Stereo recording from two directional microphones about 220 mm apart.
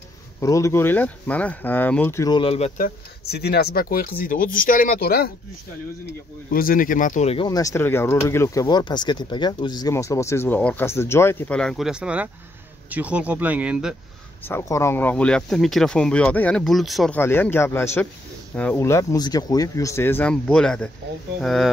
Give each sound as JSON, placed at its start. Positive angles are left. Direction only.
{"t": 0.4, "sound": "speech", "side_deg": 15}
{"t": 3.3, "sound": "speech", "side_deg": 45}
{"t": 6.5, "sound": "speech", "side_deg": 40}
{"t": 7.4, "sound": "speech", "side_deg": 15}
{"t": 14.4, "sound": "speech", "side_deg": 10}